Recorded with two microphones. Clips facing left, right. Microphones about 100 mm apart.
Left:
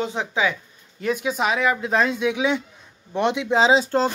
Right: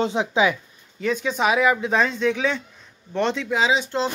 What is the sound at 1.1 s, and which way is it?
Speech, 5° left (ahead or behind).